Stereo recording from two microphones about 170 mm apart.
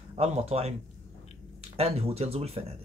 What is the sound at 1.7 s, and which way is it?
Speech, 35° right (ahead or behind).